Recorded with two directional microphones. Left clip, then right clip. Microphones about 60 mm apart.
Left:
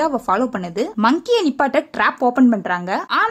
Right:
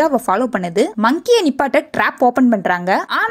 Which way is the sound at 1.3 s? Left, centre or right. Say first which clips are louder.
Right 3 dB; right.